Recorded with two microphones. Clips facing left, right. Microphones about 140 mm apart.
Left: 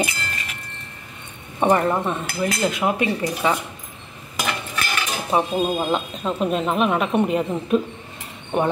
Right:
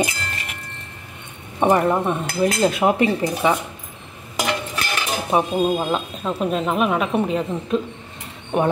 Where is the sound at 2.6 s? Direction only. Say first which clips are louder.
Right 4 dB; 30° right (ahead or behind).